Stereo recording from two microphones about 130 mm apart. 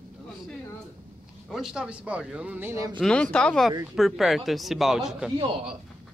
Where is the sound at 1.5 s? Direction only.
5° right (ahead or behind).